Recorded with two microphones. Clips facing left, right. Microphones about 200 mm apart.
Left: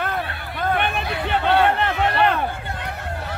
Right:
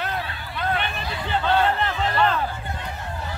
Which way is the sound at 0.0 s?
50° left (ahead or behind).